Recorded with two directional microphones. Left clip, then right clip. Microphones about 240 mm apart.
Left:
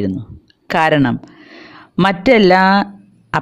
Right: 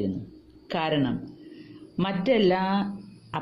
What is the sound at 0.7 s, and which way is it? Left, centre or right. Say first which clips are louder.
Speech: left 13 dB; left.